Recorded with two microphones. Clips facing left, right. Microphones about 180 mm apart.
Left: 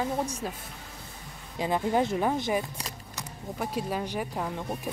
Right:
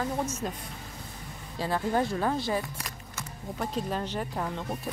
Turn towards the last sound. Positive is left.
turn(degrees=10)  # may be behind; listen again after turning